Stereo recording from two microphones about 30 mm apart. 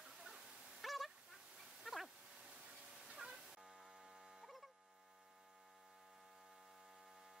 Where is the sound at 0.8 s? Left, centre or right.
Centre.